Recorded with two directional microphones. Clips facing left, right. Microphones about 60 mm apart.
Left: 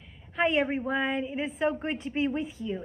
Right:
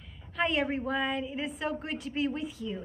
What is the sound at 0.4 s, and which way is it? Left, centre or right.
A woman's voice, left.